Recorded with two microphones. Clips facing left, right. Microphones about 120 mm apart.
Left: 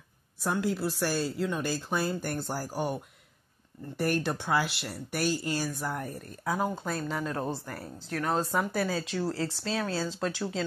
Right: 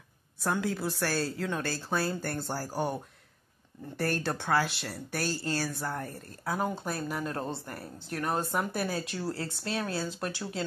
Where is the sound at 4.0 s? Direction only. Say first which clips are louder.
Left 2 dB; 15° left (ahead or behind).